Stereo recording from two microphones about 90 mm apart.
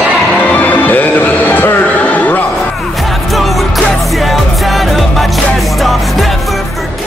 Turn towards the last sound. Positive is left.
turn(degrees=0)  # may be behind; listen again after turning